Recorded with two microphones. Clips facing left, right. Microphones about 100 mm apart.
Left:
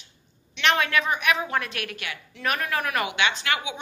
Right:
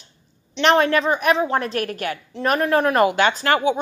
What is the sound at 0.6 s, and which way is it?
A woman's voice, 35° right (ahead or behind).